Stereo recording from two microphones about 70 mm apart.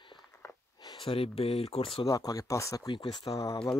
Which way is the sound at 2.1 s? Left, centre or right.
Left.